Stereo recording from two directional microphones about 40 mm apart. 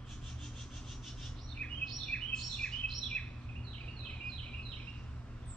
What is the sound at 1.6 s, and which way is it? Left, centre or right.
Chirp, left.